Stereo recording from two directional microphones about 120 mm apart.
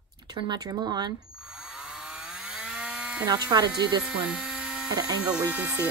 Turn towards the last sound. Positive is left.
turn(degrees=-10)  # may be behind; listen again after turning